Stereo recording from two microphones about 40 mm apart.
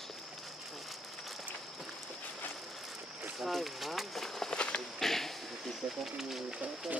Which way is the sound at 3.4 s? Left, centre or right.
Centre.